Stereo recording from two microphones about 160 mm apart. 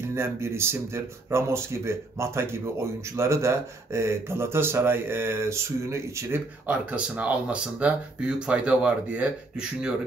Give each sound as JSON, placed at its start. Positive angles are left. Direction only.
{"t": 0.1, "sound": "speech", "side_deg": -15}